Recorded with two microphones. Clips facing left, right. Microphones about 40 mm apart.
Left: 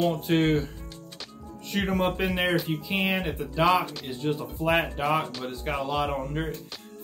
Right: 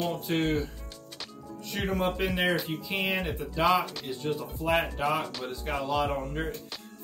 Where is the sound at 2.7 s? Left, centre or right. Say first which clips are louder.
Left 3 dB; centre.